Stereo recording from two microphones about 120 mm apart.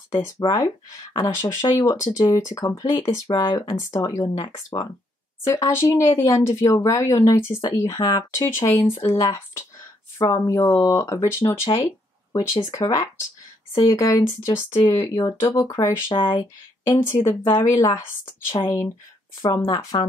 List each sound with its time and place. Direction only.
0.1 s speech: 30° left (ahead or behind)
13.7 s speech: 45° left (ahead or behind)
14.0 s speech: 30° left (ahead or behind)
16.9 s speech: 20° left (ahead or behind)